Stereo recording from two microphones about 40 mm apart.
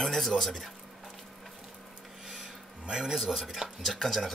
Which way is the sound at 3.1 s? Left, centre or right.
Centre.